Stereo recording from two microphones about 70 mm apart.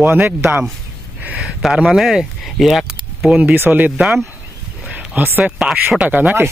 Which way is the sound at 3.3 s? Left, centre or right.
Centre.